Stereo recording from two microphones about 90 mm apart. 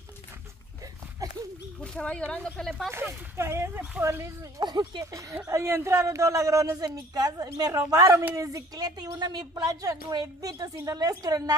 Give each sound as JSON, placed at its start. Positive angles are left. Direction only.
{"t": 1.2, "sound": "a sound", "side_deg": -40}
{"t": 1.8, "sound": "speech", "side_deg": 10}
{"t": 2.9, "sound": "a woman's voice", "side_deg": -25}
{"t": 4.6, "sound": "a woman's voice", "side_deg": -50}
{"t": 5.1, "sound": "a woman's voice", "side_deg": -35}